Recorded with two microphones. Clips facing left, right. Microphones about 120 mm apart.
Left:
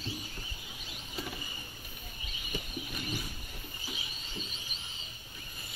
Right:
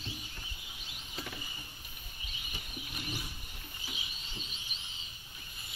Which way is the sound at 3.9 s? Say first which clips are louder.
Left 3 dB; 40° left (ahead or behind).